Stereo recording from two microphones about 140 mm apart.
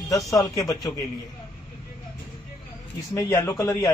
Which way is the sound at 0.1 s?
25° left (ahead or behind).